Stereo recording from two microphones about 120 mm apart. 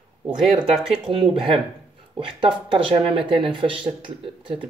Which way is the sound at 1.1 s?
50° right (ahead or behind).